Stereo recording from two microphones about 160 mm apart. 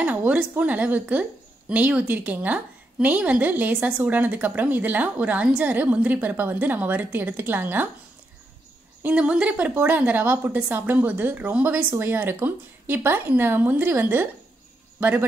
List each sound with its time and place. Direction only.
0.0 s a woman's voice: 10° right (ahead or behind)
9.0 s a woman's voice: 5° right (ahead or behind)